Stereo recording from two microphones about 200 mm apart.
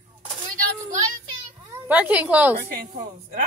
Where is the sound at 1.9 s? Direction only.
5° right (ahead or behind).